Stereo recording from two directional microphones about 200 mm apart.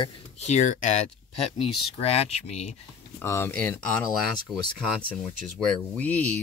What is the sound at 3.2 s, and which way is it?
Speech, 10° left (ahead or behind).